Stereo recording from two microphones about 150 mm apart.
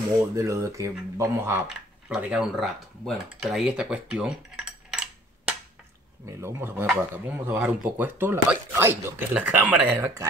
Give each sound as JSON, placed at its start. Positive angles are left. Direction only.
{"t": 0.4, "sound": "speech", "side_deg": -20}
{"t": 1.7, "sound": "speech", "side_deg": -5}
{"t": 6.2, "sound": "speech", "side_deg": -15}